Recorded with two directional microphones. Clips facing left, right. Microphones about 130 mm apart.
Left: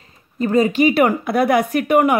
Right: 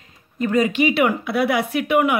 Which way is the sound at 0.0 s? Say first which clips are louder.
Left 2 dB; 35° left (ahead or behind).